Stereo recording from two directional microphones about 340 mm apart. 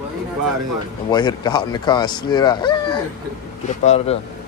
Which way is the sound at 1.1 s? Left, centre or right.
Centre.